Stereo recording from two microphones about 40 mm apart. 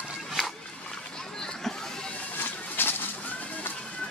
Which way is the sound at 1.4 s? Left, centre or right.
Centre.